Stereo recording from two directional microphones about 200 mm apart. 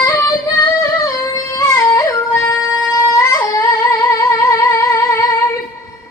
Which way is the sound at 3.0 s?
15° left (ahead or behind).